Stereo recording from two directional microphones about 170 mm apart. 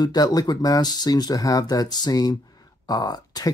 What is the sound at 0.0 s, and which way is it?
Speech, 20° left (ahead or behind).